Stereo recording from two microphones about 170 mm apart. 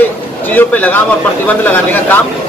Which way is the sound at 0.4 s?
10° left (ahead or behind).